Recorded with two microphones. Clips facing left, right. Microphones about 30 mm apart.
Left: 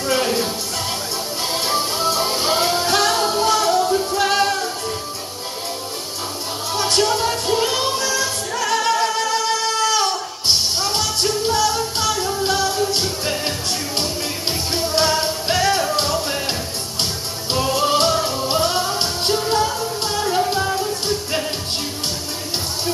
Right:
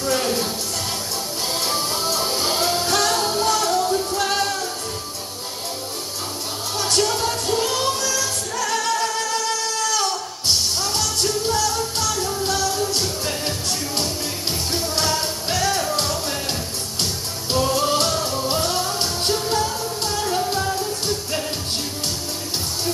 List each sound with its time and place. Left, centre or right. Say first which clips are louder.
0.0 s music: left 2 dB; centre
1.5 s music: left 3 dB; centre
4.2 s music: left 4 dB; centre
6.8 s music: left 3 dB; centre
14.7 s music: left 4 dB; left
17.5 s music: left 1 dB; centre